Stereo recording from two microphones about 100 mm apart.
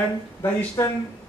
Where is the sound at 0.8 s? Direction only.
25° left (ahead or behind).